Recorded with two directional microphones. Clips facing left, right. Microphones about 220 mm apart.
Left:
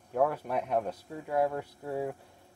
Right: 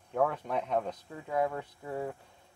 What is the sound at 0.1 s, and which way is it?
Speech, 5° left (ahead or behind).